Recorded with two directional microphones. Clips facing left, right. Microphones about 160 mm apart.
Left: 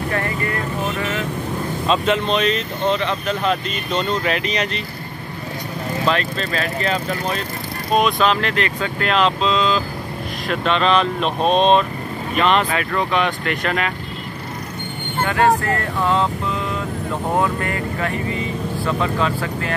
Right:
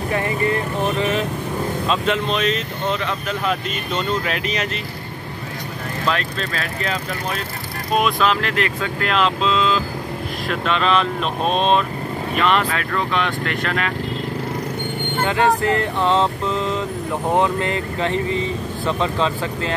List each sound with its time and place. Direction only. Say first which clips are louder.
0.1 s speech: right 5 dB; 20° right (ahead or behind)
1.9 s speech: left 4 dB; centre (ahead or behind)
6.0 s speech: left 2 dB; centre (ahead or behind)
15.2 s speech: left 1 dB; 20° right (ahead or behind)
17.4 s speech: right 1 dB; 20° right (ahead or behind)